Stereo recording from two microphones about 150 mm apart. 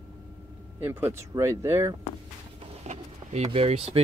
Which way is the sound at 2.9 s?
45° right (ahead or behind).